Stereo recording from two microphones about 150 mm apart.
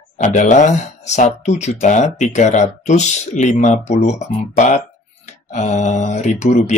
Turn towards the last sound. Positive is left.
turn(degrees=50)  # may be behind; listen again after turning